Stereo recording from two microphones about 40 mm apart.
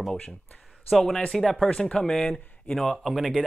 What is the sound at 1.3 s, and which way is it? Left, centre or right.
Speech, centre.